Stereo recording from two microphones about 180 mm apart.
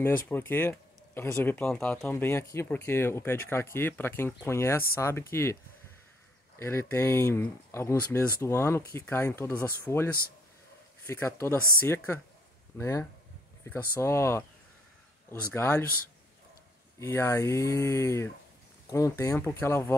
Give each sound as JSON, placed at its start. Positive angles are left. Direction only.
{"t": 0.0, "sound": "speech", "side_deg": 10}
{"t": 6.6, "sound": "speech", "side_deg": 15}
{"t": 15.5, "sound": "speech", "side_deg": 15}
{"t": 17.0, "sound": "speech", "side_deg": 15}